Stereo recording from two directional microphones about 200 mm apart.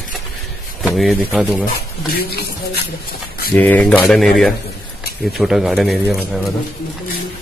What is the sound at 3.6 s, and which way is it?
A man's voice, 10° left (ahead or behind).